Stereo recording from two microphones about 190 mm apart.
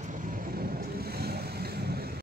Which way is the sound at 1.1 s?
55° right (ahead or behind).